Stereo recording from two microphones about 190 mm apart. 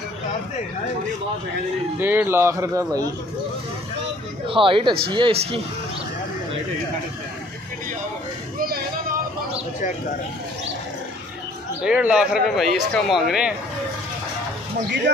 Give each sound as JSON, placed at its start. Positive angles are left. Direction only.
{"t": 2.0, "sound": "a man's voice", "side_deg": -10}
{"t": 4.5, "sound": "speech", "side_deg": -25}
{"t": 8.5, "sound": "a sound", "side_deg": -50}
{"t": 11.8, "sound": "a man's voice", "side_deg": -5}